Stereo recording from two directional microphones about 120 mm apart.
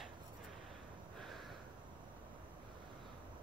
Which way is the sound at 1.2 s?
Centre (ahead or behind).